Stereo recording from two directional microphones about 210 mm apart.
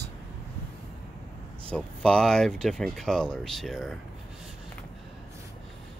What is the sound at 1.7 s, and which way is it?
Speech, 5° left (ahead or behind).